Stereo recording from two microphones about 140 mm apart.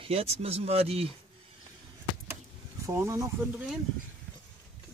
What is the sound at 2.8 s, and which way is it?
Speech, 20° right (ahead or behind).